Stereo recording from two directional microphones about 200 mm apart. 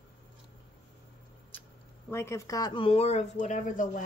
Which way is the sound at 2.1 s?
15° left (ahead or behind).